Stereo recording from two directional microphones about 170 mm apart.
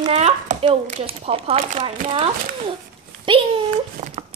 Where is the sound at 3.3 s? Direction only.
30° right (ahead or behind).